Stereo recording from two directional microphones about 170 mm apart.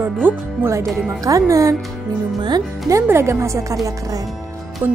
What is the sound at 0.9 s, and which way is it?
Speech, 5° right (ahead or behind).